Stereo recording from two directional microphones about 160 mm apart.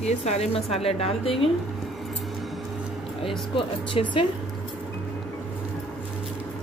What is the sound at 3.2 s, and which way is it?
Speech, 30° left (ahead or behind).